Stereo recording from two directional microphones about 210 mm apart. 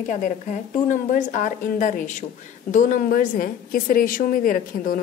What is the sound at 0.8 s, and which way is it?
Speech, 40° left (ahead or behind).